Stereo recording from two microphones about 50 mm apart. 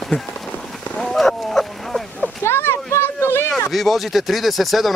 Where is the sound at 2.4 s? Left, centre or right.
Left.